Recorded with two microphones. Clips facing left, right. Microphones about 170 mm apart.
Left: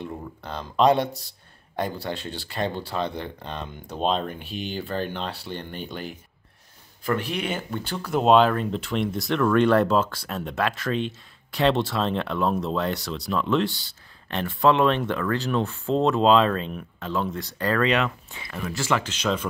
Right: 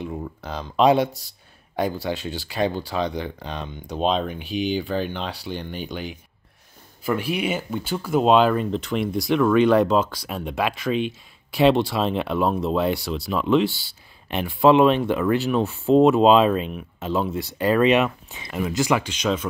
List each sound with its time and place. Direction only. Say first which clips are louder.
0.0 s speech: right 4 dB; 5° right (ahead or behind)